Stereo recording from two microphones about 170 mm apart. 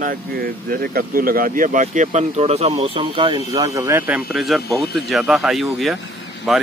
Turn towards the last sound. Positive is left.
turn(degrees=0)  # may be behind; listen again after turning